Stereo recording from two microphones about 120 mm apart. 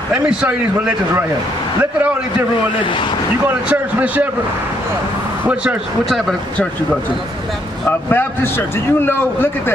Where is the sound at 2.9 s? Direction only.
45° left (ahead or behind).